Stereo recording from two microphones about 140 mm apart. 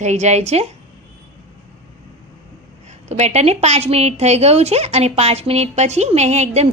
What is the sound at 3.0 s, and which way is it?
A woman's voice, 55° right (ahead or behind).